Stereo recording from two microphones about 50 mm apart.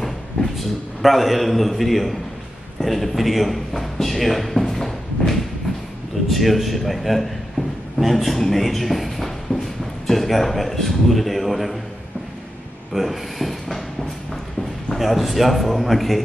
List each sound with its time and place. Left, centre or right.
0.0 s a man's voice: centre
12.9 s a man's voice: centre
15.0 s a man's voice: centre